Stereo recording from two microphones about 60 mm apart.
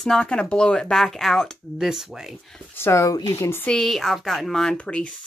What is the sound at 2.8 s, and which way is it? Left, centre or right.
Speech, left.